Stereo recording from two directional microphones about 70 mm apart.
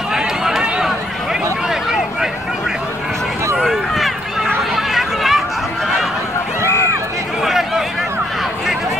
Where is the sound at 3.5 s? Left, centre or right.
Centre.